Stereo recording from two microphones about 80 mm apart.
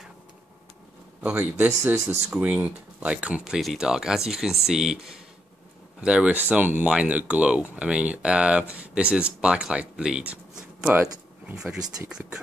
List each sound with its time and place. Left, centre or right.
1.2 s speech: centre
2.2 s speech: centre